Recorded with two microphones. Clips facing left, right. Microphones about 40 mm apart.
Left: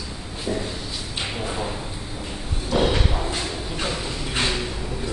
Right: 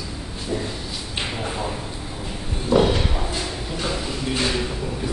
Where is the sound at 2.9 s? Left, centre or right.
Left.